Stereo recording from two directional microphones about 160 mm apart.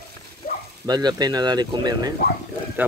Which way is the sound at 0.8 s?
25° right (ahead or behind).